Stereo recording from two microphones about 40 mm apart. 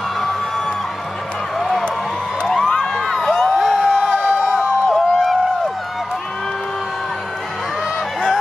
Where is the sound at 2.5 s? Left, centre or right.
Centre.